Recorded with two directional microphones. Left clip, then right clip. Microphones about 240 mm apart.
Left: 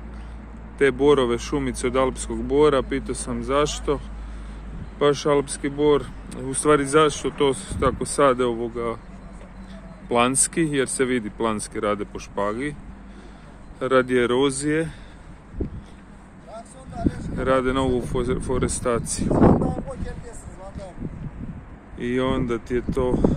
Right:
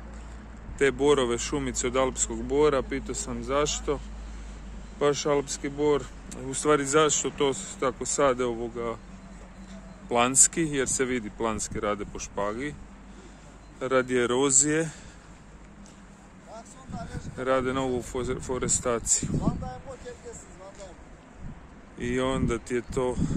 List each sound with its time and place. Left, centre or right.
0.7 s speech: centre
10.0 s speech: centre
13.7 s speech: centre
17.4 s speech: centre
21.9 s speech: centre